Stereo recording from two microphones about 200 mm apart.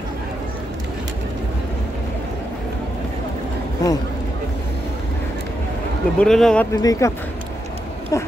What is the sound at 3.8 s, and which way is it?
Speech, 20° left (ahead or behind).